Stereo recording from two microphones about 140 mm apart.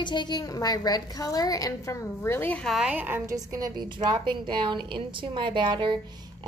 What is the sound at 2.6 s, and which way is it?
A woman's voice, 5° right (ahead or behind).